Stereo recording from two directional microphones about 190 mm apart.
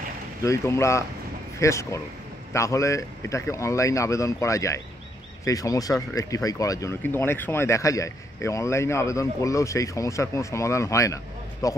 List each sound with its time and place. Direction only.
0.4 s speech: 15° left (ahead or behind)